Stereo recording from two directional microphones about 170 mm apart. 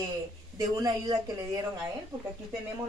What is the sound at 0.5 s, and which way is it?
Speech, 20° right (ahead or behind).